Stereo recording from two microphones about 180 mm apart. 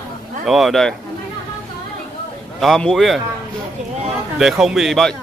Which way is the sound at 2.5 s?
Centre (ahead or behind).